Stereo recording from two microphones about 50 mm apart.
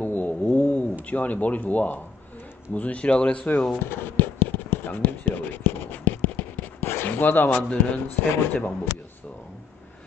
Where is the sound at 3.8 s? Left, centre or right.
Left.